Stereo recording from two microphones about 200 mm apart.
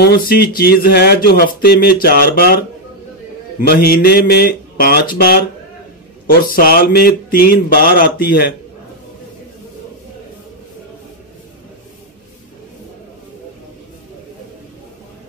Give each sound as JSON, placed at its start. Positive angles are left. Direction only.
{"t": 0.0, "sound": "speech", "side_deg": 50}
{"t": 3.6, "sound": "speech", "side_deg": 50}
{"t": 6.4, "sound": "speech", "side_deg": 50}